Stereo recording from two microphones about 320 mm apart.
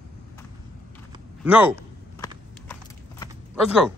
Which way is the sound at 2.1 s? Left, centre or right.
Centre.